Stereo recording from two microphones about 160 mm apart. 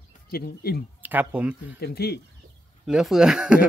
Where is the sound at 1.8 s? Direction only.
85° left.